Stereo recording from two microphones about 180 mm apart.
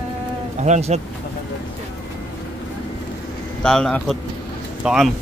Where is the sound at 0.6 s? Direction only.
40° right (ahead or behind).